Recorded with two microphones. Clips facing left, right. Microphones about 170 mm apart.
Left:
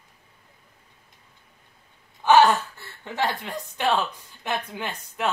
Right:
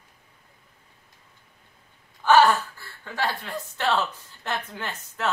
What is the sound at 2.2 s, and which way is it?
Speech, 20° left (ahead or behind).